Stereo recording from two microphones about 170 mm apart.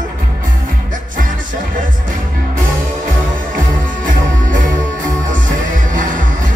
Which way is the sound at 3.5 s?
50° right (ahead or behind).